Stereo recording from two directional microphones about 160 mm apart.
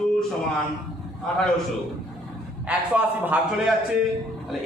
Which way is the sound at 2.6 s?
10° right (ahead or behind).